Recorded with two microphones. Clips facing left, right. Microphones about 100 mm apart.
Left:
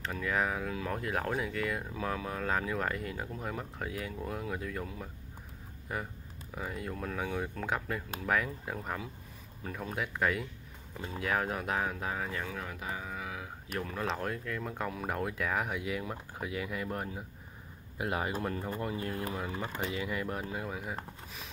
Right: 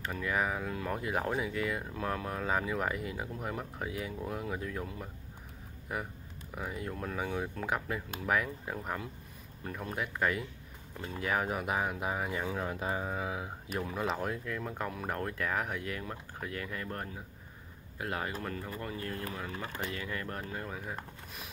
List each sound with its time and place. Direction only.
0.0 s speech: 5° right (ahead or behind); by 13.5 s 25° right (ahead or behind)
13.7 s speech: 10° right (ahead or behind)